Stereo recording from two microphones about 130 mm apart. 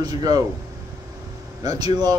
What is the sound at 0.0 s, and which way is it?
Speech, 30° right (ahead or behind).